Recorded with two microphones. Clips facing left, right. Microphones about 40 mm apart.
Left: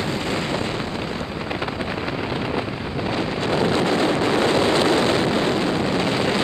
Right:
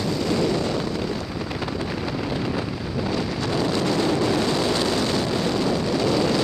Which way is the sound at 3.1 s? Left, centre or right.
Left.